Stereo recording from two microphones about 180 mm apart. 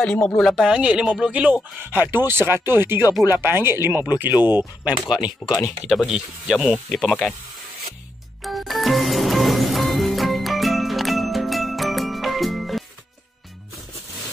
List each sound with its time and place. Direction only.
0.0 s speech: 5° left (ahead or behind); by 4.9 s 10° right (ahead or behind)
5.4 s speech: 20° left (ahead or behind)
6.0 s speech: 5° right (ahead or behind)
8.5 s music: centre (ahead or behind)